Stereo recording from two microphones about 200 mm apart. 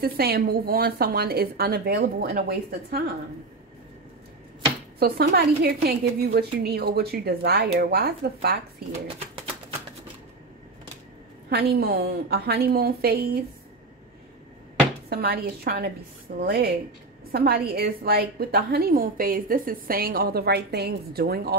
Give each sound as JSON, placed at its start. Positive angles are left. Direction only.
{"t": 0.0, "sound": "a woman's voice", "side_deg": -50}
{"t": 4.9, "sound": "a woman's voice", "side_deg": -50}
{"t": 11.4, "sound": "a woman's voice", "side_deg": -55}
{"t": 15.0, "sound": "a woman's voice", "side_deg": -50}